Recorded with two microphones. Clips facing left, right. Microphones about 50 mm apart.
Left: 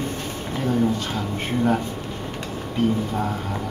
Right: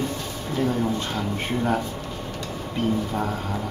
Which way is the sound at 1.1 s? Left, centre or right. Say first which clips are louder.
Left 1 dB; centre.